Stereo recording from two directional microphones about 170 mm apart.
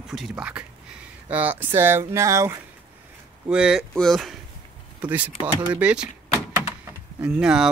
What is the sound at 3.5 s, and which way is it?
Speech, 5° right (ahead or behind).